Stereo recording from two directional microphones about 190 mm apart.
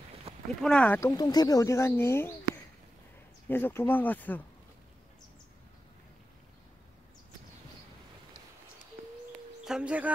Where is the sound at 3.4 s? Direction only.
10° left (ahead or behind).